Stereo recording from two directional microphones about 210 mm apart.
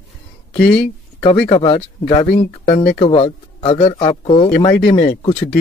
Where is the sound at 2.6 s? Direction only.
45° left (ahead or behind).